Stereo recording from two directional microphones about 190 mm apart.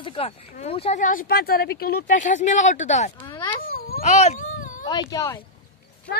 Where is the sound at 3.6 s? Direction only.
50° left (ahead or behind).